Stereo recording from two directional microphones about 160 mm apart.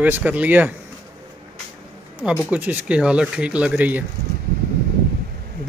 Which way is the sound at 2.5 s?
10° right (ahead or behind).